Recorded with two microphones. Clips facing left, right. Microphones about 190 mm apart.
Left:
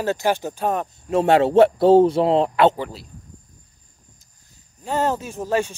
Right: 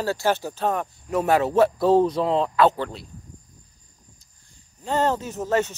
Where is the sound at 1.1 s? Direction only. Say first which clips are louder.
Left 5 dB; 25° left (ahead or behind).